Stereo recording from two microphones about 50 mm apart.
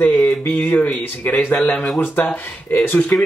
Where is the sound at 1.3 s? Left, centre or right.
Left.